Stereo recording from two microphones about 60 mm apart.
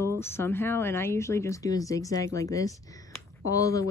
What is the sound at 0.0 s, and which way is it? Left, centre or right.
Speech, left.